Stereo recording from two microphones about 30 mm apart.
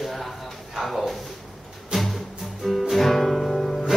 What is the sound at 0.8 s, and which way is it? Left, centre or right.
Speech, centre.